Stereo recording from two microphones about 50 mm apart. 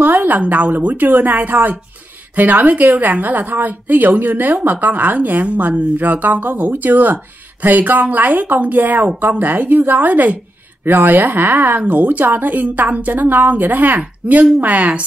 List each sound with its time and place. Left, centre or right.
0.0 s a woman's voice: right